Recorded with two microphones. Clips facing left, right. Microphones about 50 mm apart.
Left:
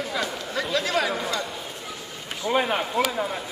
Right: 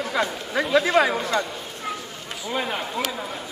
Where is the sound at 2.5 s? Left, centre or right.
Centre.